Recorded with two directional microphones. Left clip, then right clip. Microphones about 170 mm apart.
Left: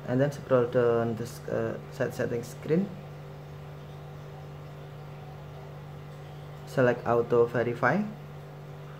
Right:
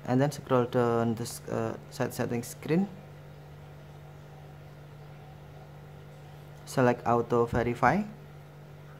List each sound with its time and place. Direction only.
0.0 s speech: 35° right (ahead or behind)
6.7 s speech: 30° right (ahead or behind)